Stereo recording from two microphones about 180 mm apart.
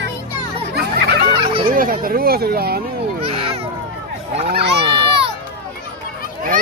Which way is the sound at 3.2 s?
30° right (ahead or behind).